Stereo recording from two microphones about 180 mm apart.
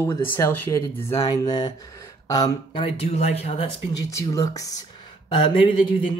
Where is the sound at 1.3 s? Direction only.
25° left (ahead or behind).